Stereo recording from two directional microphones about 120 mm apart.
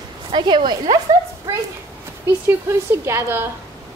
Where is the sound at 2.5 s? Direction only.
20° right (ahead or behind).